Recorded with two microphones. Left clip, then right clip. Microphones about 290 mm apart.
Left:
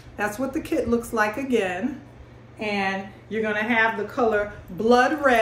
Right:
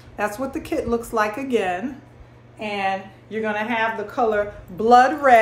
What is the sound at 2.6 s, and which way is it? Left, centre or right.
A woman's voice, centre.